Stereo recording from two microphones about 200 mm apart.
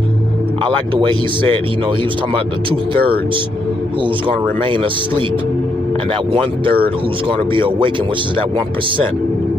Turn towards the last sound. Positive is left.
turn(degrees=-25)  # may be behind; listen again after turning